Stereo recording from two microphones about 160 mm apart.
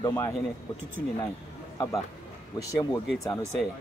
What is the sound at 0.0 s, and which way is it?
Speech, 15° left (ahead or behind).